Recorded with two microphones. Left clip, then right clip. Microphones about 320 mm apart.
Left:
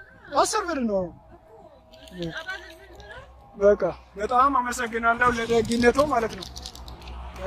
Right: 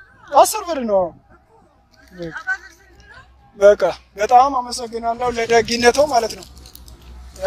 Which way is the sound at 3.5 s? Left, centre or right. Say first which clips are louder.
Right 8 dB; right.